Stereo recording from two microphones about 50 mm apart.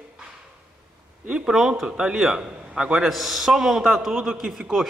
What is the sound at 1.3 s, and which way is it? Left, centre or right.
A man's voice, centre.